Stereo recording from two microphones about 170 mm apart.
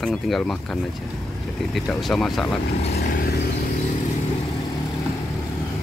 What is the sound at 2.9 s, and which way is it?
Vehicle, 65° left (ahead or behind).